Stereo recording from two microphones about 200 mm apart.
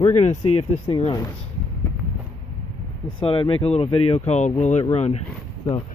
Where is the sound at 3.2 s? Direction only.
25° left (ahead or behind).